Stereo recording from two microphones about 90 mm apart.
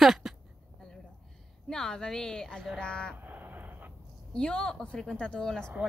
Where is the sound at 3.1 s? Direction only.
20° right (ahead or behind).